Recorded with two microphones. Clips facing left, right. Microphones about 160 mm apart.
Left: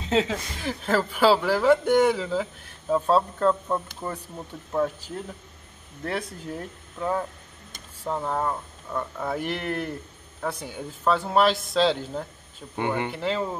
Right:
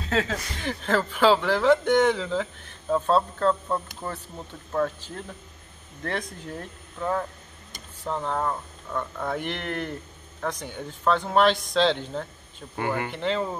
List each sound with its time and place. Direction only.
0.0 s speech: 20° left (ahead or behind)
0.6 s a man's voice: 5° left (ahead or behind)
12.7 s speech: 20° left (ahead or behind)
13.1 s a man's voice: 5° left (ahead or behind)